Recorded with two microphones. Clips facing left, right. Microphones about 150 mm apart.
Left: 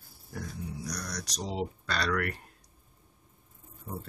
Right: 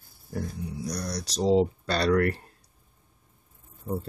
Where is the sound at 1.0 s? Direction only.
30° right (ahead or behind).